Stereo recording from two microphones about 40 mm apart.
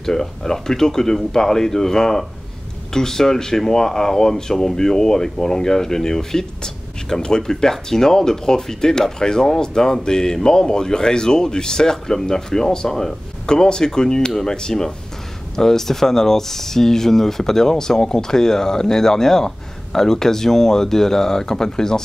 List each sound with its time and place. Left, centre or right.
0.0 s speech: centre